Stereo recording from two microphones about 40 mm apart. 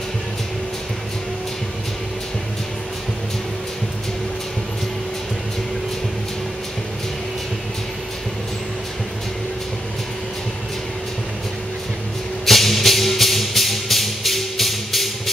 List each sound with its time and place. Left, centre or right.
12.4 s music: centre